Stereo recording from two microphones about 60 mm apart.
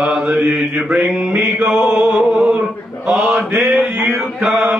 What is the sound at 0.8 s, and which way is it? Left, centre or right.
A man's voice, centre.